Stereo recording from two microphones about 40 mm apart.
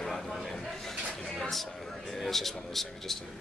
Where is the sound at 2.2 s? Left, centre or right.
Centre.